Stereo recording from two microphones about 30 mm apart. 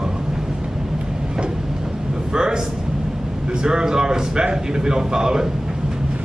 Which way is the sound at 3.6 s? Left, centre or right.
Right.